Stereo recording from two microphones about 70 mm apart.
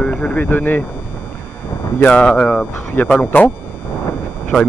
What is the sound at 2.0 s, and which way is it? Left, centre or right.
Speech, centre.